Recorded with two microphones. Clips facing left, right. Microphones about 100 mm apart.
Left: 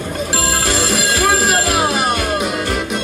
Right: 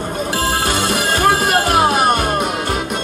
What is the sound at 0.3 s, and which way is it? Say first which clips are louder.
Music: right 1 dB; 45° right (ahead or behind).